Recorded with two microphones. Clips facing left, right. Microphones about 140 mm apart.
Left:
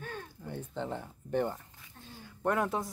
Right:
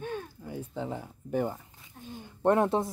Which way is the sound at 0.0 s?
10° right (ahead or behind).